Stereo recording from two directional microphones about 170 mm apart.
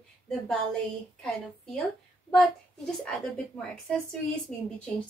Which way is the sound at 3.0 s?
5° left (ahead or behind).